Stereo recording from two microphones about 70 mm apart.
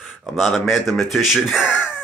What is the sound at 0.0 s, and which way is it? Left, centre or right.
A man's voice, centre.